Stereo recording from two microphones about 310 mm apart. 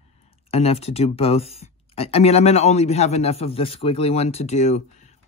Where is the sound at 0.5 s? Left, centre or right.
Centre.